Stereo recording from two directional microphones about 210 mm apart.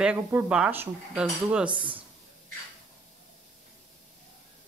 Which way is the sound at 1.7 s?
25° right (ahead or behind).